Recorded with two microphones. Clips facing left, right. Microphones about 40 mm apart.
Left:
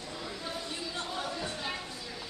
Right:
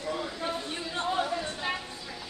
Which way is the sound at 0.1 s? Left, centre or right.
Right.